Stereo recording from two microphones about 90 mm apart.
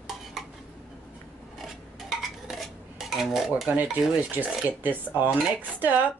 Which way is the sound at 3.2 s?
5° right (ahead or behind).